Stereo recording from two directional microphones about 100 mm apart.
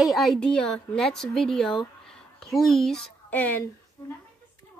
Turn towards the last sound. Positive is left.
turn(degrees=15)  # may be behind; listen again after turning